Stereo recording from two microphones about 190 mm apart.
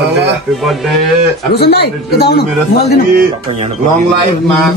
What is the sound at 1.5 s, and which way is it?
Speech, 55° left (ahead or behind).